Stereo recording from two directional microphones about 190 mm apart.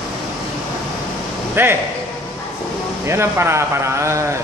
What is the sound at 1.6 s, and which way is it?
Speech, 10° right (ahead or behind).